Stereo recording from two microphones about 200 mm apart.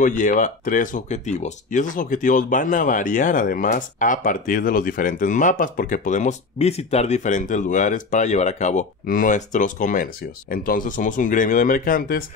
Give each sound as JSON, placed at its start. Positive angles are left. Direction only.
{"t": 0.0, "sound": "speech", "side_deg": 40}